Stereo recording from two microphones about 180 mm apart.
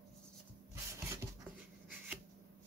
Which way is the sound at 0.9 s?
15° right (ahead or behind).